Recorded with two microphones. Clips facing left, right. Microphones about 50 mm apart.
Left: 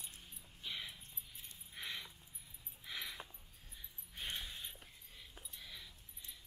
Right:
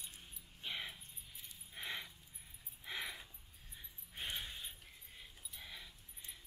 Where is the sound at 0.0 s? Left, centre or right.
Right.